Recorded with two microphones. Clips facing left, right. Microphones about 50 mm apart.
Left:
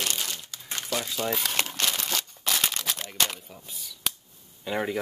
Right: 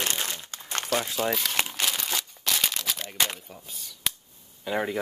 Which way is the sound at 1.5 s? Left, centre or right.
Centre.